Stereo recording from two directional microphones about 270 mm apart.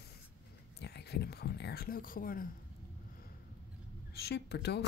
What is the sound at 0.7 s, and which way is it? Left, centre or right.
Speech, left.